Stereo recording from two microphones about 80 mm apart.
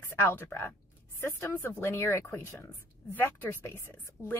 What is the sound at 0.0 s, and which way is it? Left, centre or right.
Speech, left.